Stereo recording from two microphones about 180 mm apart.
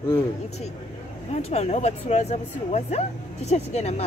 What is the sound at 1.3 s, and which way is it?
Speech, 35° left (ahead or behind).